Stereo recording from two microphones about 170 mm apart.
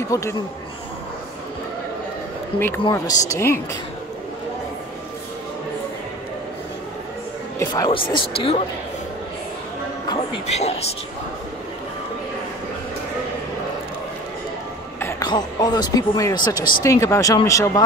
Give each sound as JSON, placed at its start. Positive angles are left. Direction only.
{"t": 0.1, "sound": "speech", "side_deg": 20}
{"t": 2.9, "sound": "speech", "side_deg": 20}
{"t": 7.5, "sound": "speech", "side_deg": 25}
{"t": 10.4, "sound": "speech", "side_deg": 40}
{"t": 15.0, "sound": "speech", "side_deg": 15}